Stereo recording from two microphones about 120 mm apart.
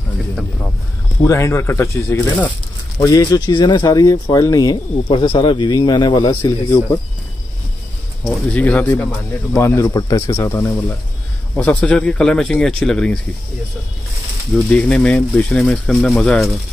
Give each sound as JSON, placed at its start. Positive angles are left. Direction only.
{"t": 1.2, "sound": "speech", "side_deg": 25}
{"t": 5.0, "sound": "speech", "side_deg": 45}
{"t": 8.3, "sound": "speech", "side_deg": 10}
{"t": 9.9, "sound": "speech", "side_deg": 30}
{"t": 11.5, "sound": "speech", "side_deg": 15}
{"t": 14.5, "sound": "speech", "side_deg": 10}